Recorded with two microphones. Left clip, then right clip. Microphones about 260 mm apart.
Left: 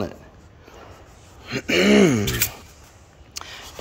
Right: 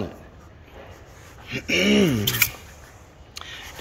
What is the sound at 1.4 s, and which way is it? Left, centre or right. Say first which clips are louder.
Speech: left 2 dB; centre.